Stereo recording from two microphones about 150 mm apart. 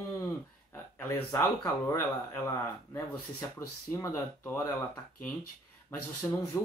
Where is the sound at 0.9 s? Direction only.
15° left (ahead or behind).